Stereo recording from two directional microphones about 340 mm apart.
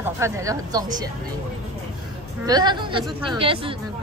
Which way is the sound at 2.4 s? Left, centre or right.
Centre.